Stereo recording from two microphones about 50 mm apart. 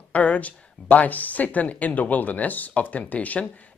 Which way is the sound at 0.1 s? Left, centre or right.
Left.